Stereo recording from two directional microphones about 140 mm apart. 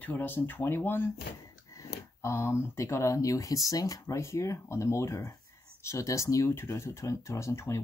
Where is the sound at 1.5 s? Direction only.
25° left (ahead or behind).